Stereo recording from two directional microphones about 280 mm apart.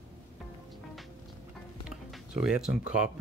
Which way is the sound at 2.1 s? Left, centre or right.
Centre.